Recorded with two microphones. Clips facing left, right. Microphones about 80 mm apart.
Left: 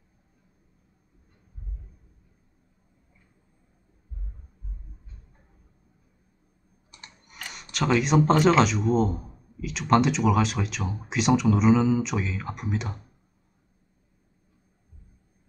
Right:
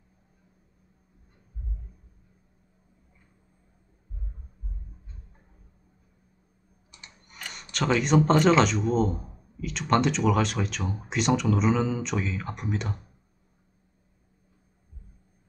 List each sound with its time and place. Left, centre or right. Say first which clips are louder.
6.9 s typing: left 2 dB; left
7.4 s speech: left 1 dB; centre